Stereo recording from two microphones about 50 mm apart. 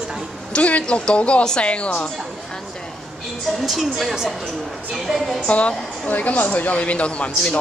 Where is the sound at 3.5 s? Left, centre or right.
Centre.